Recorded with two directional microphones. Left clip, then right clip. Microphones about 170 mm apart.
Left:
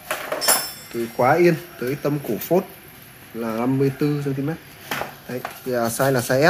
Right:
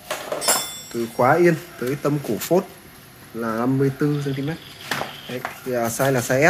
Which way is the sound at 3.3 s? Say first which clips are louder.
Right 1 dB; 5° right (ahead or behind).